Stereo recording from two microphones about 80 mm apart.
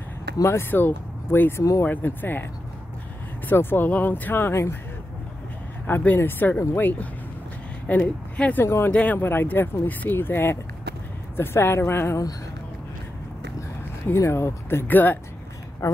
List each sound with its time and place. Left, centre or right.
0.4 s speech: left
1.6 s speech: left
1.9 s speech: left
3.4 s speech: left
5.9 s speech: left
8.5 s speech: left
14.1 s speech: left
15.8 s speech: left